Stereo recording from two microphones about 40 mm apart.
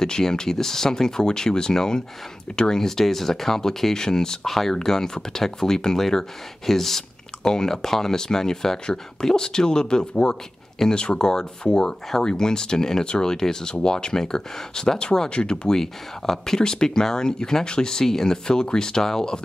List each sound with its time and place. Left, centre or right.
0.0 s speech: centre